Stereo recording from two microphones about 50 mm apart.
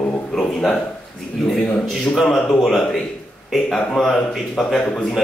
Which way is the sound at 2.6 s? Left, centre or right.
Centre.